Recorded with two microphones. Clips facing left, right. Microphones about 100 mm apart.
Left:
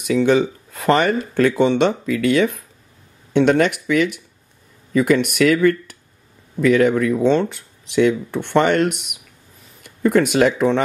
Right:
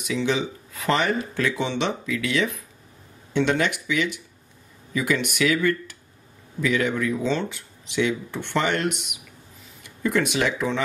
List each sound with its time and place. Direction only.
0.0 s speech: 50° left (ahead or behind)